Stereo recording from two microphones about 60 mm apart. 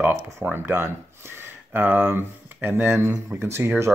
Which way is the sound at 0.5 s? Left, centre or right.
Right.